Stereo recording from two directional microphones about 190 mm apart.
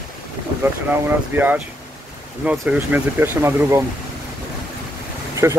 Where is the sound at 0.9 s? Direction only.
10° right (ahead or behind).